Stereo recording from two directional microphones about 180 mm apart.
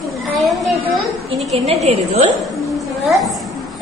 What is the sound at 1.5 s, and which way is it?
Speech, 35° right (ahead or behind).